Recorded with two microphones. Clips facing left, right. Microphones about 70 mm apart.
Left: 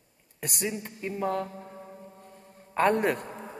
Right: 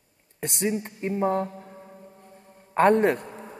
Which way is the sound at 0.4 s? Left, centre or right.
Right.